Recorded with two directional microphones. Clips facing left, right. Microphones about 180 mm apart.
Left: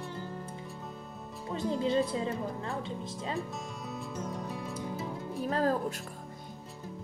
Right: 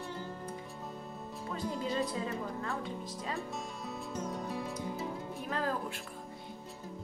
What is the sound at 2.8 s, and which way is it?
Speech, 25° left (ahead or behind).